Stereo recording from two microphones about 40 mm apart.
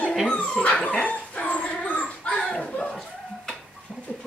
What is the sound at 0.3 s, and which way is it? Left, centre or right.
Dog, left.